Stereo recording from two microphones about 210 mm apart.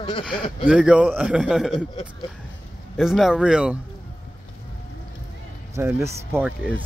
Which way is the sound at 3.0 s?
Centre (ahead or behind).